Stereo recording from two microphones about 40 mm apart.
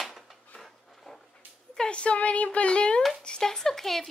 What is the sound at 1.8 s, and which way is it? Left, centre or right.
Speech, left.